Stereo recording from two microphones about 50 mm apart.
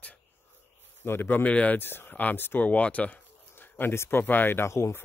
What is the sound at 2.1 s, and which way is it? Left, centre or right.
Speech, left.